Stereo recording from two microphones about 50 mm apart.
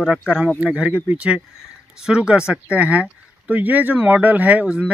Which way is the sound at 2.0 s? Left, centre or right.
Centre.